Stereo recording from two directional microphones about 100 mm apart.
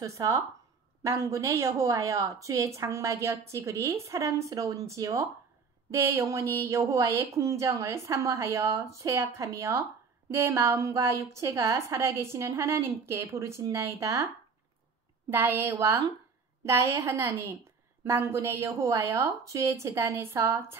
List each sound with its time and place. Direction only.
0.0 s a woman's voice: 30° right (ahead or behind)
15.2 s a woman's voice: 20° right (ahead or behind)